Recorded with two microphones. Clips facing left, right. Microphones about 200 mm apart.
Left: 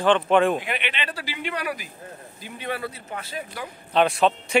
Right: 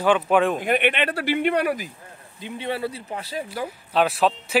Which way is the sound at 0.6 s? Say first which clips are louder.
Right 9 dB; 50° right (ahead or behind).